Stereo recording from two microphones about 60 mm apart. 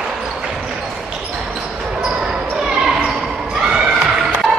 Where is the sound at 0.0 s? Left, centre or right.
Centre.